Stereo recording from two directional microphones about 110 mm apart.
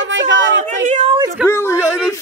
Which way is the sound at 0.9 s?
90° right.